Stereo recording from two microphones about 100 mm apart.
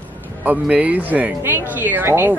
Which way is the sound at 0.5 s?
15° right (ahead or behind).